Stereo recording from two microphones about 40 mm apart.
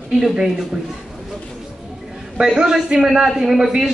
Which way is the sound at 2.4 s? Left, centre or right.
Centre.